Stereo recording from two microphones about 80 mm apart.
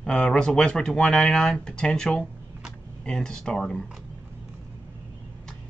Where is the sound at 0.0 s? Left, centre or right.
Centre.